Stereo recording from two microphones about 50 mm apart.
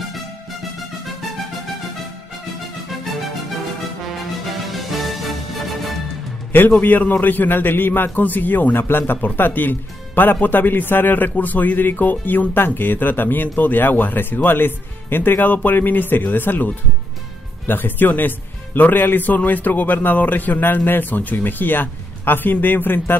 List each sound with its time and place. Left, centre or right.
4.6 s music: centre
6.8 s speech: left